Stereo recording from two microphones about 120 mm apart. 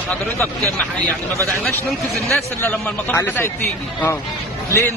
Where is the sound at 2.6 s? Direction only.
20° left (ahead or behind).